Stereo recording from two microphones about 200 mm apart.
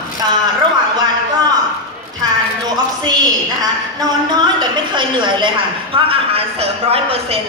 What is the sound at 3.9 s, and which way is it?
A woman's voice, 20° right (ahead or behind).